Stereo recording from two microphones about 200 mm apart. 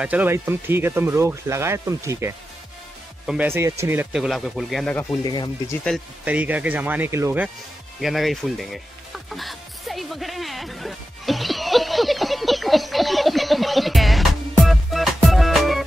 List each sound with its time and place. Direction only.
0.0 s speech: 10° right (ahead or behind)
5.2 s speech: 20° left (ahead or behind)
6.2 s speech: 5° right (ahead or behind)
8.0 s music: centre (ahead or behind)